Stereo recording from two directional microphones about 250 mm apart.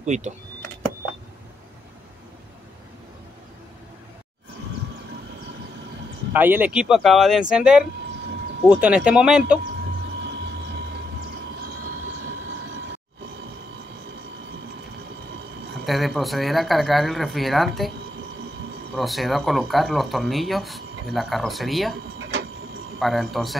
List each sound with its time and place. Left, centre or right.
0.0 s speech: right
6.3 s speech: centre
15.8 s speech: centre
18.9 s speech: centre
22.9 s speech: centre